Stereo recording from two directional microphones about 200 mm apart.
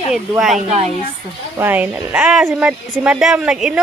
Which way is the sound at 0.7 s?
30° right (ahead or behind).